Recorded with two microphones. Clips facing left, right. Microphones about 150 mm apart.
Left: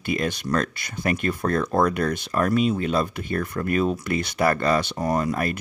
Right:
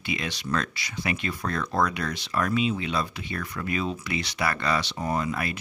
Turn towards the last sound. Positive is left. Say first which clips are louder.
# left 5 dB
turn(degrees=45)  # may be behind; listen again after turning